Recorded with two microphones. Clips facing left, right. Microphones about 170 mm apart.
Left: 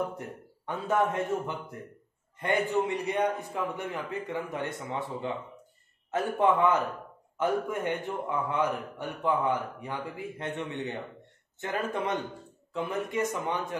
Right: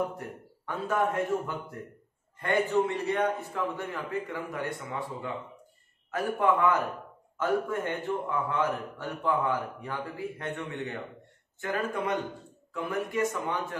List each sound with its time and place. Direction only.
0.7 s a man's voice: 20° left (ahead or behind)